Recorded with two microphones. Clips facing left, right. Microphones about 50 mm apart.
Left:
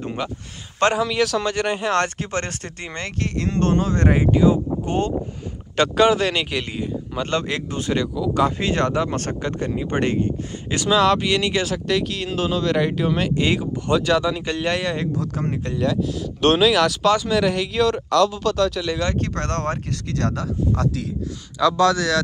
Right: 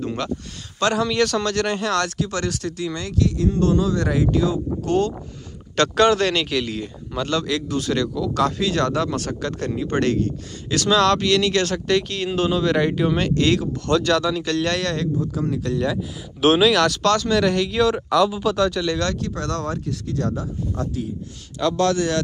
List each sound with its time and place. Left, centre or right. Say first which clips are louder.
0.9 s speech: even; centre
1.4 s speech: even; centre
2.0 s speech: left 1 dB; left
4.3 s speech: left 4 dB; left
5.8 s speech: even; centre
7.2 s speech: right 2 dB; left
8.5 s speech: even; left
10.9 s speech: even; centre
11.6 s speech: right 1 dB; centre
13.4 s speech: right 2 dB; centre
15.8 s speech: left 3 dB; centre
18.9 s speech: right 1 dB; centre
19.1 s speech: left 1 dB; left
20.2 s speech: left 4 dB; left